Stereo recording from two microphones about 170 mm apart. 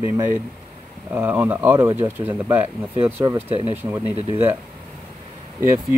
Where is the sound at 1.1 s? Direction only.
10° right (ahead or behind).